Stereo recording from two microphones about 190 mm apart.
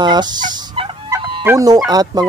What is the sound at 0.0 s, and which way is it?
Speech, 20° right (ahead or behind).